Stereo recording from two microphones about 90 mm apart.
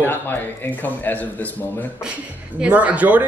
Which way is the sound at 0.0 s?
20° left (ahead or behind).